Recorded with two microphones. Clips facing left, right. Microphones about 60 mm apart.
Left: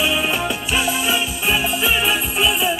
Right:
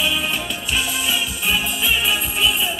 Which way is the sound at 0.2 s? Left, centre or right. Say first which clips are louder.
Left 4 dB; left.